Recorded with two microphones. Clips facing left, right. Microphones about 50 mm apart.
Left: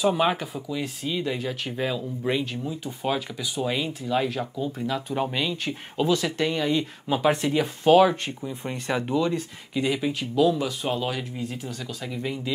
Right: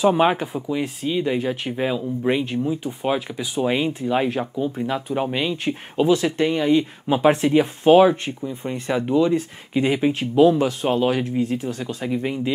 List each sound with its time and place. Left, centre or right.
0.0 s speech: right
8.4 s speech: centre
9.1 s speech: right